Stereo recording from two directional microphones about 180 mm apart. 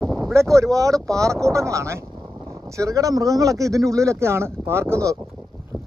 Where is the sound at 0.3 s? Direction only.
15° right (ahead or behind).